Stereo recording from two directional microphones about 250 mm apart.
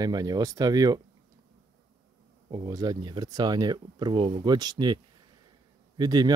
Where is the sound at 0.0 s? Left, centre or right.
Centre.